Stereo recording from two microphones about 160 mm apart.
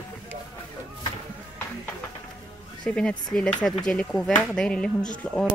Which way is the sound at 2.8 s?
5° left (ahead or behind).